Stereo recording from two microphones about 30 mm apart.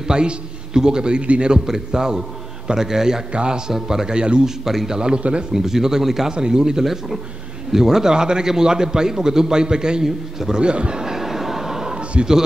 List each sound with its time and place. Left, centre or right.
0.1 s a man's voice: right
1.2 s a man's voice: right
1.5 s a man's voice: right
3.7 s speech: centre
4.0 s a man's voice: right
4.6 s speech: centre
5.1 s speech: right
5.5 s speech: centre
6.3 s a man's voice: right
6.8 s a man's voice: centre; by 10.0 s right
10.0 s speech: centre
10.6 s speech: right
11.0 s train: centre